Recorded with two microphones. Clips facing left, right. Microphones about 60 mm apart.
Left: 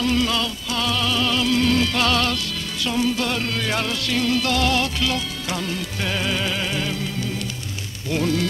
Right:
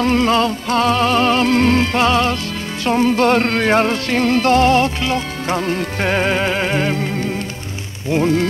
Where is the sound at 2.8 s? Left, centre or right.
Right.